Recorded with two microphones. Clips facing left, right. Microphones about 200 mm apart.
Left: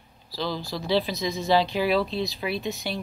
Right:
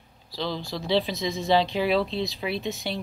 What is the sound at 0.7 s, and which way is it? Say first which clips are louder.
Speech: even; 25° right (ahead or behind).